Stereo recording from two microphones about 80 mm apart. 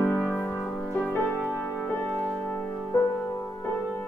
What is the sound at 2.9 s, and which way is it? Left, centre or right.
Music, left.